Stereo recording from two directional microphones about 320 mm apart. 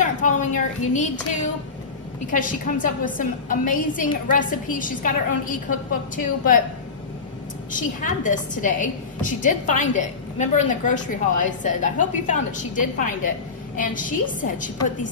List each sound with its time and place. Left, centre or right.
0.0 s a woman's voice: left
7.7 s a woman's voice: left